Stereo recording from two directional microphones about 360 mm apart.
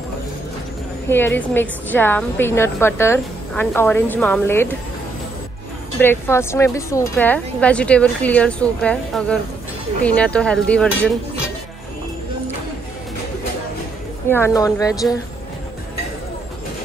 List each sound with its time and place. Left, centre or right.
1.0 s a woman's voice: centre
5.9 s a woman's voice: centre
14.3 s speech: centre